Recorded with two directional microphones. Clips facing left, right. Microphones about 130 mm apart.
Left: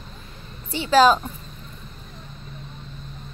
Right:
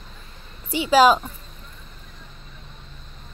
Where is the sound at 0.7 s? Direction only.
10° right (ahead or behind).